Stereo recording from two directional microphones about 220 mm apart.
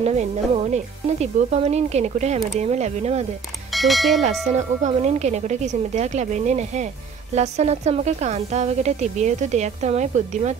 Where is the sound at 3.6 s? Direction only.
Centre (ahead or behind).